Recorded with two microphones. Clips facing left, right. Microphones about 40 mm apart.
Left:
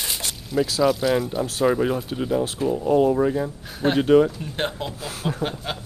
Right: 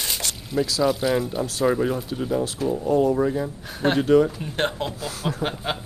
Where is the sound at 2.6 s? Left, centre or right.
Centre.